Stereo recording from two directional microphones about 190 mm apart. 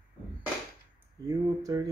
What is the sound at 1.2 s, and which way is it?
Speech, 20° right (ahead or behind).